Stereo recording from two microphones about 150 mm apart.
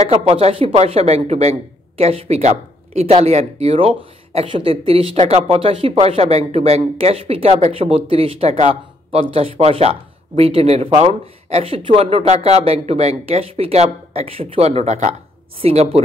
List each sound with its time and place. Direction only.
0.1 s speech: 40° right (ahead or behind)